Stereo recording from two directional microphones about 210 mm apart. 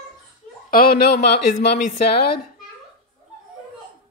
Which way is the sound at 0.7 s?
45° left (ahead or behind).